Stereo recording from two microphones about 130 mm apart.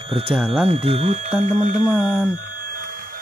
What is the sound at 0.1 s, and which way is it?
Speech, 45° right (ahead or behind).